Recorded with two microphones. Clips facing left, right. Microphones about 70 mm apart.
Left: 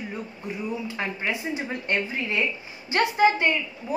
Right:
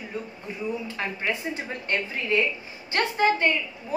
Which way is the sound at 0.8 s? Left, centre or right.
Centre.